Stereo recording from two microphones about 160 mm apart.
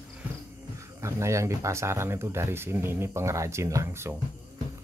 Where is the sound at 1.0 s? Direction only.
20° right (ahead or behind).